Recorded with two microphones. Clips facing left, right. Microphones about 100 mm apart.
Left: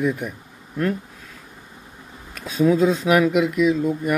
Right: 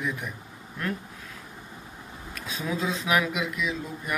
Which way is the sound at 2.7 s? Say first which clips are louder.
Left 8 dB; 50° left (ahead or behind).